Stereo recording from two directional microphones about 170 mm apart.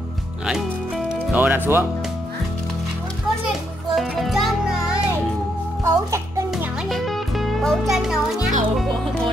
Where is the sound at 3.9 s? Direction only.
Centre (ahead or behind).